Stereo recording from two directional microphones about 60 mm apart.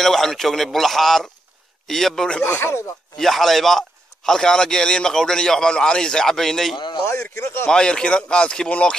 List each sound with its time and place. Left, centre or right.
0.0 s a man's voice: centre
2.4 s speech: left
3.2 s a man's voice: centre